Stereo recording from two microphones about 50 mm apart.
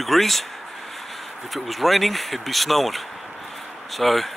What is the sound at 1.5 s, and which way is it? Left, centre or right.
Speech, centre.